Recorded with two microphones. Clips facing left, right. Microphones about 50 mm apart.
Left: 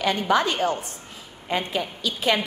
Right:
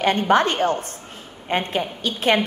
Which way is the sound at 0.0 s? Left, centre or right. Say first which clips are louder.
Right 4 dB; right.